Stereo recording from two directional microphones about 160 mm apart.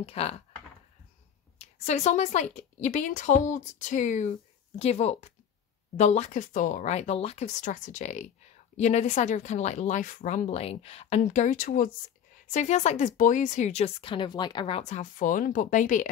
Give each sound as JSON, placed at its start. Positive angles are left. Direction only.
{"t": 0.0, "sound": "speech", "side_deg": 40}
{"t": 1.6, "sound": "a woman's voice", "side_deg": 45}
{"t": 14.8, "sound": "speech", "side_deg": 45}